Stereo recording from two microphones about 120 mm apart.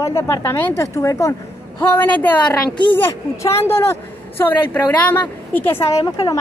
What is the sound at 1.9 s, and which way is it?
Speech, 15° left (ahead or behind).